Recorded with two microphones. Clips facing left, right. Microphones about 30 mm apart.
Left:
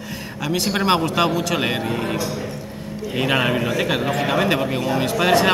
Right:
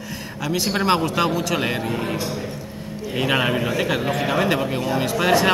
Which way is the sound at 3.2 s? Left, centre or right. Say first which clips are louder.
Left 1 dB; centre.